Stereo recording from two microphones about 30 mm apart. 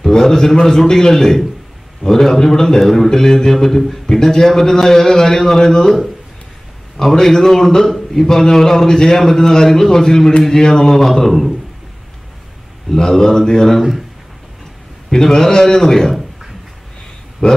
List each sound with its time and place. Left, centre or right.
0.0 s a man's voice: centre
7.0 s a man's voice: centre
12.9 s a man's voice: centre
15.0 s a man's voice: centre
17.4 s a sound: left